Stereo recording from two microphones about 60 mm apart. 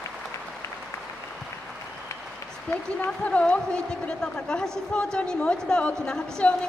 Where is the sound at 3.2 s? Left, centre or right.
Left.